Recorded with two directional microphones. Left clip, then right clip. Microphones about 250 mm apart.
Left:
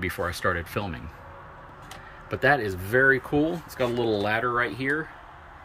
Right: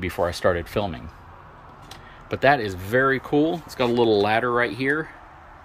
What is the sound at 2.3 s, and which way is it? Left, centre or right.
Speech, centre.